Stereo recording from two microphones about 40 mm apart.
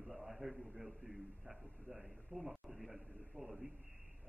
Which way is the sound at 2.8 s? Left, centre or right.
Centre.